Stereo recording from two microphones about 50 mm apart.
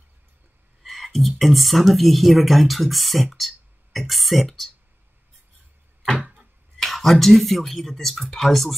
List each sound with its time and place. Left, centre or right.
0.8 s speech: centre
6.8 s speech: centre